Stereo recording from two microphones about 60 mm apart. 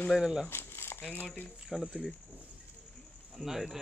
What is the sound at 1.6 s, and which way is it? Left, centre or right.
Speech, centre.